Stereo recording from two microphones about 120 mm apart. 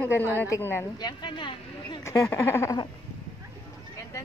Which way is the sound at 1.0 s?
40° left (ahead or behind).